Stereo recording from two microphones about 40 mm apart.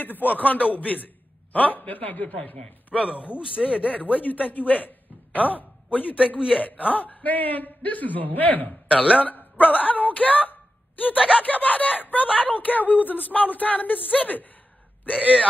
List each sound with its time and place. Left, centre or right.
0.0 s a man's voice: left
2.9 s speech: centre
3.3 s speech: right
4.0 s a man's voice: left
8.9 s speech: right
9.2 s a man's voice: left
10.5 s a sound: left
11.1 s speech: right
11.4 s a man's voice: left
15.1 s speech: right